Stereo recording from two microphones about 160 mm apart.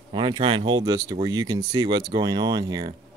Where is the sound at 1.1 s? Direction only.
25° right (ahead or behind).